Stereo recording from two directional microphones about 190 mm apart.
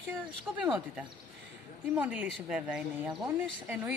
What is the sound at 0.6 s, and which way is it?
Speech, 5° right (ahead or behind).